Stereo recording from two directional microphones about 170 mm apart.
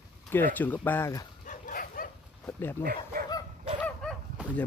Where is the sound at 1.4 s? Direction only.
55° left (ahead or behind).